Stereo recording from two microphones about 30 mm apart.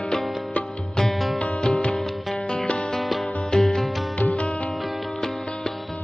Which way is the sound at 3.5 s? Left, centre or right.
Centre.